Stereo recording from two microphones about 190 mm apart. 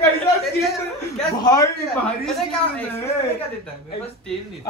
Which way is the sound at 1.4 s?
20° left (ahead or behind).